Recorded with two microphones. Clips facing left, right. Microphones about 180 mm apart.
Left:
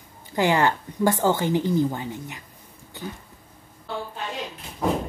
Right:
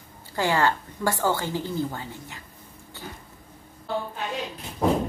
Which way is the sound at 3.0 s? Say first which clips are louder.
Left 6 dB; 15° left (ahead or behind).